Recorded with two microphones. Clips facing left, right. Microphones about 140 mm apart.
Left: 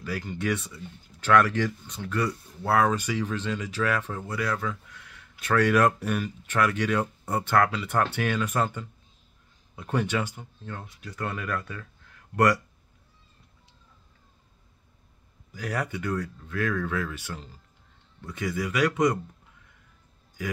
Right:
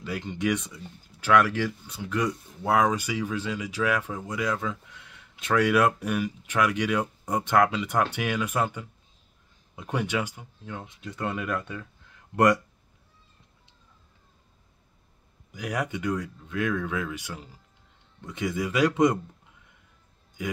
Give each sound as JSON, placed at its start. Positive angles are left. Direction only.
{"t": 0.0, "sound": "speech", "side_deg": -20}
{"t": 15.5, "sound": "speech", "side_deg": -15}